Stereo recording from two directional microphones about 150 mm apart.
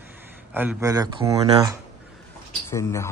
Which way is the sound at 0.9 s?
25° right (ahead or behind).